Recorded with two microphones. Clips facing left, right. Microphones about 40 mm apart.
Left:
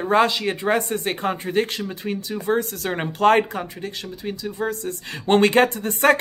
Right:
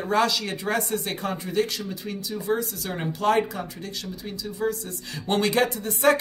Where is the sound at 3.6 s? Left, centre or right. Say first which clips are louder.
Left 4 dB; left.